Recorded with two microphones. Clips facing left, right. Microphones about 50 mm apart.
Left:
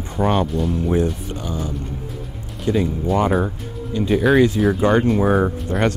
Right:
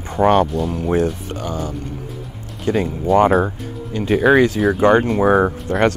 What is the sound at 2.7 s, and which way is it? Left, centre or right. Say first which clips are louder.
Speech: right 1 dB; right.